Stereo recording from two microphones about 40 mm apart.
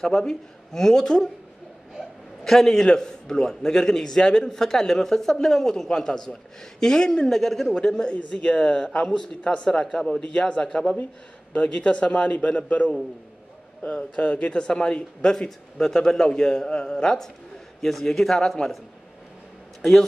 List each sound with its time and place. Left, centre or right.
0.3 s a man's voice: centre
2.4 s a man's voice: centre
8.2 s a man's voice: left
9.4 s a man's voice: left
9.7 s a man's voice: centre
10.2 s a man's voice: left
11.5 s a man's voice: left
13.9 s a man's voice: left; by 18.7 s centre
19.8 s a man's voice: centre